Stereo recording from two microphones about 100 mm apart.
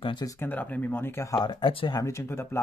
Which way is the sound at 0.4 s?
15° left (ahead or behind).